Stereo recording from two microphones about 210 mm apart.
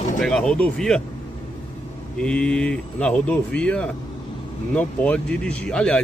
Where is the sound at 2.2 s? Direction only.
5° left (ahead or behind).